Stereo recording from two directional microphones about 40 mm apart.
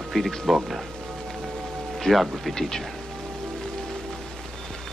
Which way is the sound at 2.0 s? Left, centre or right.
Centre.